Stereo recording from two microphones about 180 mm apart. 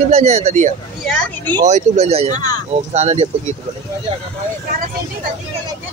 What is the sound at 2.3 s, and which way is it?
Speech, 20° left (ahead or behind).